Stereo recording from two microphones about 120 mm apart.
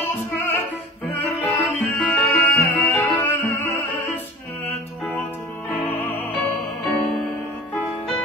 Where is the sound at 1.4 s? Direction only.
15° left (ahead or behind).